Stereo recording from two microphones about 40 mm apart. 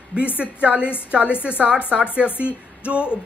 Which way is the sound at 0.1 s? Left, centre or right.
Right.